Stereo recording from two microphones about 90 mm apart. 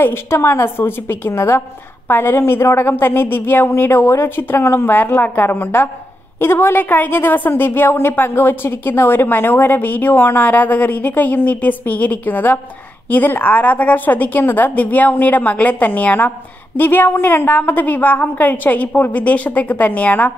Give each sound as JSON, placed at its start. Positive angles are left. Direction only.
{"t": 0.0, "sound": "a woman's voice", "side_deg": 30}